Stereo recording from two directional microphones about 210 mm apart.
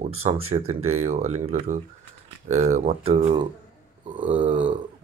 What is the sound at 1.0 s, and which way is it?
Speech, 30° right (ahead or behind).